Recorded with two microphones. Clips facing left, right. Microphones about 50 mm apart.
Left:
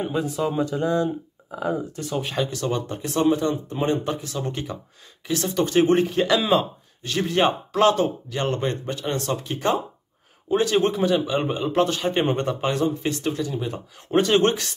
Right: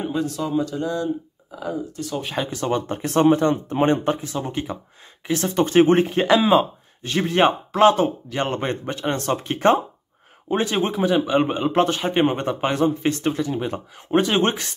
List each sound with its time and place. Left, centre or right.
0.1 s speech: centre; by 2.0 s left
2.5 s a man's voice: right
3.0 s speech: right
4.4 s speech: centre
5.2 s speech: right
6.4 s speech: centre
7.0 s a man's voice: right
10.5 s a man's voice: right
10.8 s a man's voice: centre
12.1 s a man's voice: centre; by 13.7 s right
14.1 s speech: centre
14.5 s a man's voice: right